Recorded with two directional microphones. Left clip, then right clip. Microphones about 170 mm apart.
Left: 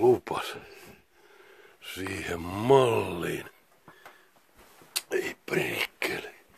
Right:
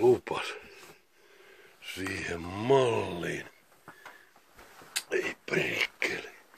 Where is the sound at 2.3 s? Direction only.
50° left (ahead or behind).